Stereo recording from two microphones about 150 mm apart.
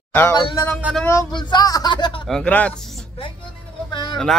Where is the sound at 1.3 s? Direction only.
25° left (ahead or behind).